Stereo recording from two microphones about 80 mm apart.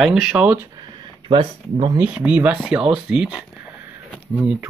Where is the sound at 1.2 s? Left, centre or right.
Right.